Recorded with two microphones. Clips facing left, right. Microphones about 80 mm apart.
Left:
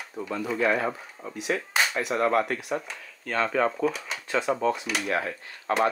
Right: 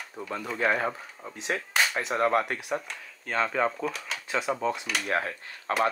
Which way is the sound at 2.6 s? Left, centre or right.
Centre.